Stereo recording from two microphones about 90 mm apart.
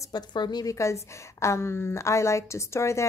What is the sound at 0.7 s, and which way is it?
A woman's voice, 35° left (ahead or behind).